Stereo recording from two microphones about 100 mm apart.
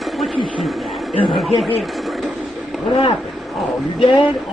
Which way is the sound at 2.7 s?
Centre (ahead or behind).